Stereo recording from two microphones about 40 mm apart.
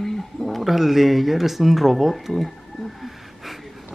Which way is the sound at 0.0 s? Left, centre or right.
Centre.